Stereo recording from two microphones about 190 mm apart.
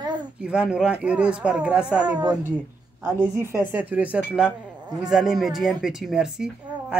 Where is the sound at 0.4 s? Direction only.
5° right (ahead or behind).